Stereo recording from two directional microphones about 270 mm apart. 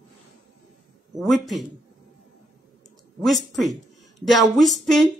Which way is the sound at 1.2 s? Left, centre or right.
Centre.